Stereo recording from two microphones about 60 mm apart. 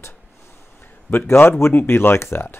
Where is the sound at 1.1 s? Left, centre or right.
Left.